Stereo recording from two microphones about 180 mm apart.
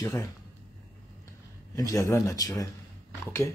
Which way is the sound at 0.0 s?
15° left (ahead or behind).